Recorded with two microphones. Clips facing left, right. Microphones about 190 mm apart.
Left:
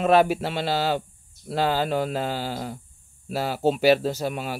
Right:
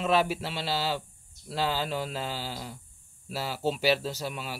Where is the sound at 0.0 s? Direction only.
55° left (ahead or behind).